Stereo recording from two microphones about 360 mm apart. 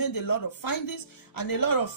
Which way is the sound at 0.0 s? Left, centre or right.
Left.